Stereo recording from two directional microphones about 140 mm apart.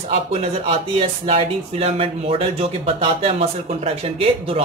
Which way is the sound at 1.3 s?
45° right (ahead or behind).